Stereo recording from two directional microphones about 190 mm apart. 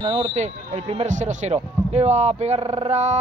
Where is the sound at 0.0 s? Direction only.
35° right (ahead or behind).